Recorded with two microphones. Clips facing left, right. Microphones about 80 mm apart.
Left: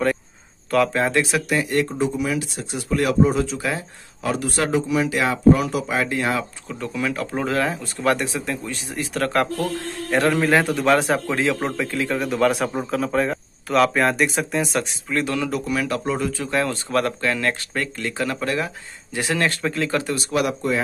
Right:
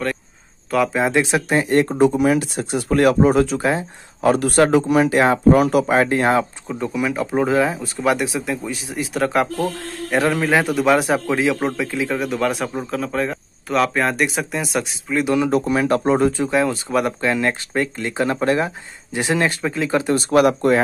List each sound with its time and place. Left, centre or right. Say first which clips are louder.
0.7 s speech: right 1 dB; centre
1.1 s speech: right 3 dB; right
1.9 s speech: right 7 dB; right
3.6 s speech: right 6 dB; right
4.3 s speech: right 7 dB; right
6.7 s a man's voice: right 2 dB; centre
15.2 s speech: right 6 dB; centre
15.5 s speech: right 6 dB; right
16.4 s speech: right 4 dB; centre
20.2 s speech: right 10 dB; right